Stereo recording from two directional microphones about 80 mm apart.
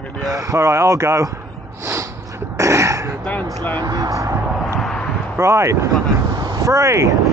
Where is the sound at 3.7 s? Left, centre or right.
Right.